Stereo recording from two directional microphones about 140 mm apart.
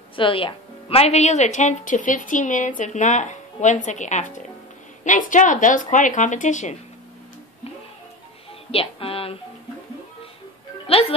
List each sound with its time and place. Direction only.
0.1 s a woman's voice: 40° left (ahead or behind); by 6.8 s 60° left (ahead or behind)
8.7 s a sound: 40° left (ahead or behind)
10.9 s speech: 45° left (ahead or behind)